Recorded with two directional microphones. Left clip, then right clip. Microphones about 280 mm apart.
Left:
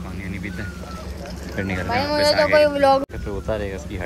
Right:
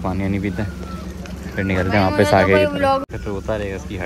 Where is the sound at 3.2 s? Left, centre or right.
Centre.